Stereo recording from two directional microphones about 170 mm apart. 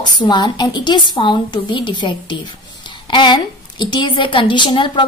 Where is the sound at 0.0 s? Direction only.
25° left (ahead or behind).